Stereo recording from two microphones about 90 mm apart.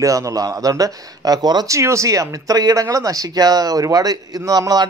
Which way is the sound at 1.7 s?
35° right (ahead or behind).